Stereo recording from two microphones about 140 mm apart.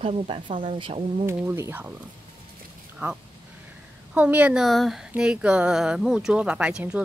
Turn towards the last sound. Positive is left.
turn(degrees=-5)  # may be behind; listen again after turning